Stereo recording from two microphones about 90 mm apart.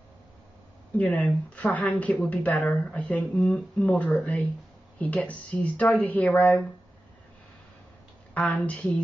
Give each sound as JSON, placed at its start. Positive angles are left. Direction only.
{"t": 0.9, "sound": "speech", "side_deg": 15}
{"t": 3.3, "sound": "speech", "side_deg": 5}
{"t": 8.5, "sound": "speech", "side_deg": 15}